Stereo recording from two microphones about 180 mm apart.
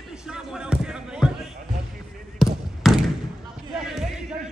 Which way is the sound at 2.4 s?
Centre (ahead or behind).